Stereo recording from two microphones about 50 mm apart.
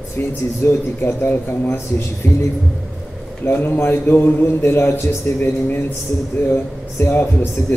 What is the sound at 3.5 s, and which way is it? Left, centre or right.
Speech, left.